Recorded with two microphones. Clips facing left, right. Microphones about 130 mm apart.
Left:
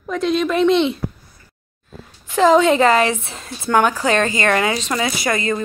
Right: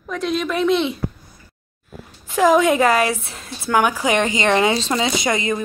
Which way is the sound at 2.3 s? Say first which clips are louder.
Left 2 dB; 10° right (ahead or behind).